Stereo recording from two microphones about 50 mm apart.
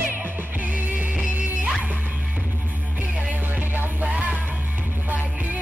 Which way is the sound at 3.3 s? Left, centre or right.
Right.